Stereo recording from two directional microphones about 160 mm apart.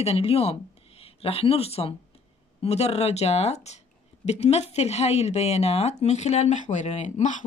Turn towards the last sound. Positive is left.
turn(degrees=50)  # may be behind; listen again after turning